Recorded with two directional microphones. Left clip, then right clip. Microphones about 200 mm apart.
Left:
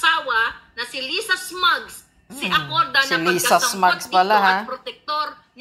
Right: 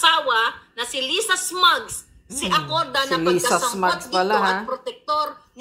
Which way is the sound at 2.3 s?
Centre (ahead or behind).